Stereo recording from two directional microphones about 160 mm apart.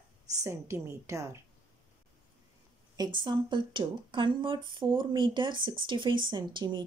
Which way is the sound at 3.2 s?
30° right (ahead or behind).